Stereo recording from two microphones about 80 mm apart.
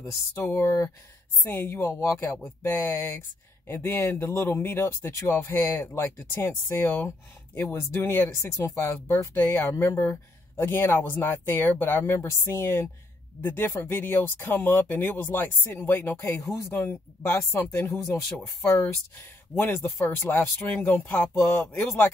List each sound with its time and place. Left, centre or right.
0.4 s speech: left
9.3 s speech: left